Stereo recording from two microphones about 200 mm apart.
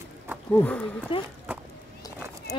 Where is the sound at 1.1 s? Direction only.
25° left (ahead or behind).